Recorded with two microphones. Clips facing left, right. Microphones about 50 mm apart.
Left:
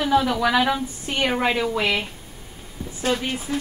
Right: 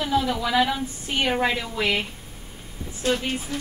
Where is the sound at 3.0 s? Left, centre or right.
Centre.